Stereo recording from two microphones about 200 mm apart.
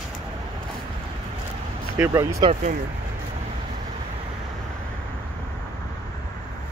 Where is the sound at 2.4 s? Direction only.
30° right (ahead or behind).